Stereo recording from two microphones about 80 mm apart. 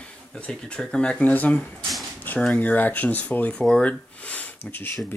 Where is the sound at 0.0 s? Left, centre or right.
Centre.